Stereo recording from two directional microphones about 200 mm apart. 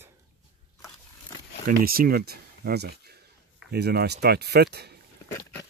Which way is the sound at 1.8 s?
50° right (ahead or behind).